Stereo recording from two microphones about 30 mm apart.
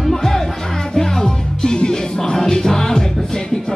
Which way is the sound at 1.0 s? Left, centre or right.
Left.